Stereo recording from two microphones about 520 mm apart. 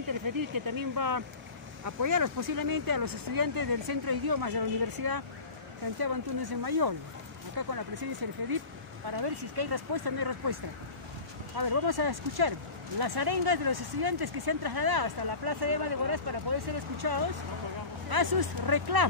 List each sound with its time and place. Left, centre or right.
0.1 s speech: right